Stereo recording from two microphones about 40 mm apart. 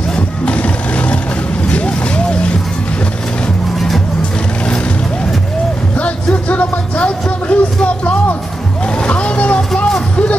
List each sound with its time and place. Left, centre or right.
0.5 s music: left
1.7 s vehicle: left
5.9 s music: left
8.8 s boat: left